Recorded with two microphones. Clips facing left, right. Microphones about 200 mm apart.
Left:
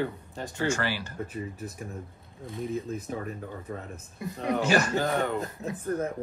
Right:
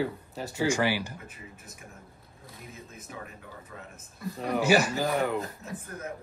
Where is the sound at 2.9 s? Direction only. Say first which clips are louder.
Left 10 dB; 35° left (ahead or behind).